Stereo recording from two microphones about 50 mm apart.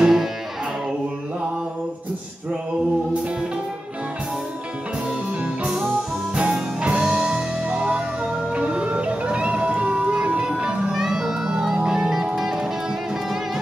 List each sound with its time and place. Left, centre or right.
0.0 s music: centre
6.3 s music: right
11.0 s music: centre